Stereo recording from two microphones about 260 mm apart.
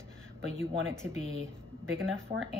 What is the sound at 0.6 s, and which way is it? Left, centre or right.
Speech, right.